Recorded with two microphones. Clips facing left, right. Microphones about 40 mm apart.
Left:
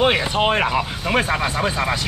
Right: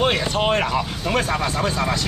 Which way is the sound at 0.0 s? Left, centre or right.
Centre.